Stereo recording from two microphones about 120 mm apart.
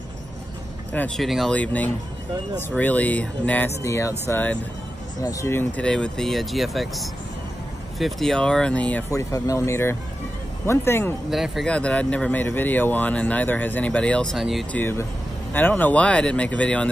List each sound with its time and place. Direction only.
0.9 s speech: 5° left (ahead or behind)
1.5 s speech: 10° left (ahead or behind)
5.2 s speech: 25° left (ahead or behind)
5.8 s speech: 10° left (ahead or behind)
9.1 s speech: 25° left (ahead or behind)
11.2 s speech: 5° right (ahead or behind)
11.7 s speech: 10° left (ahead or behind)
14.7 s speech: 15° left (ahead or behind)